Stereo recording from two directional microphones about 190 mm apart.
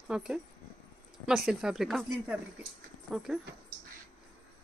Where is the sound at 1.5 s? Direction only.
5° right (ahead or behind).